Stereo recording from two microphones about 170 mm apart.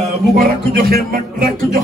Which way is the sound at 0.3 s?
60° right (ahead or behind).